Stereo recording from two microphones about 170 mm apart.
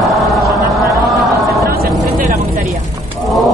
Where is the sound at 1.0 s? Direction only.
Centre (ahead or behind).